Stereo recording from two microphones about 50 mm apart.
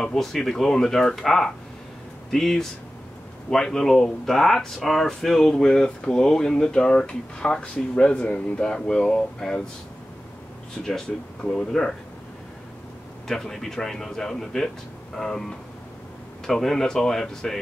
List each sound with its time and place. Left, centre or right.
0.0 s speech: centre
10.8 s speech: centre
13.3 s speech: centre
16.4 s speech: centre